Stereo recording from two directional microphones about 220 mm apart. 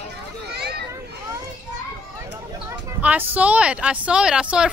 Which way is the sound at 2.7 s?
5° right (ahead or behind).